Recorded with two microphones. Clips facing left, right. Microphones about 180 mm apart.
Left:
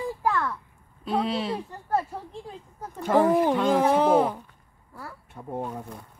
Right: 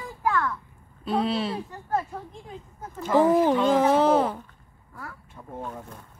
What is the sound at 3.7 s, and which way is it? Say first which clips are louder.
Speech: right 1 dB; 10° left (ahead or behind).